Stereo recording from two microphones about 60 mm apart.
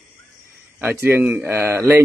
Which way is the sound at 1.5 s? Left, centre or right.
Right.